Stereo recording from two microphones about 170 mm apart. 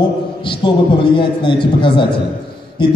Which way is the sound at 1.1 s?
30° left (ahead or behind).